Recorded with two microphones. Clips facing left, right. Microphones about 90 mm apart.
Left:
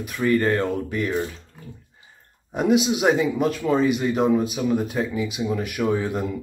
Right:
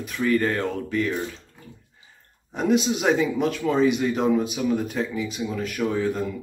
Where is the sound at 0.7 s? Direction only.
15° left (ahead or behind).